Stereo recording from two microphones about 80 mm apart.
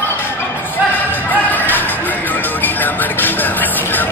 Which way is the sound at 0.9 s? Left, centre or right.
Left.